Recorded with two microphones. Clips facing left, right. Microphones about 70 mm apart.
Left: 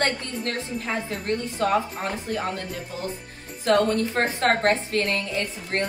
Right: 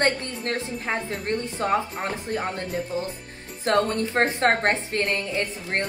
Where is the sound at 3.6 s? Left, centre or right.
Right.